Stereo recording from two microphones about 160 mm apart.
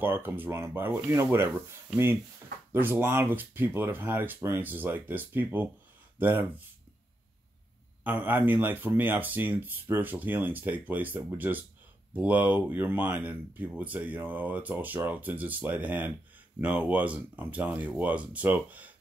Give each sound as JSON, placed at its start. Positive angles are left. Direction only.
{"t": 0.0, "sound": "speech", "side_deg": -15}
{"t": 8.0, "sound": "speech", "side_deg": -10}